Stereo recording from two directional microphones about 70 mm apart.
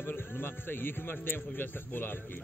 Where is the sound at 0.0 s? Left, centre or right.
Left.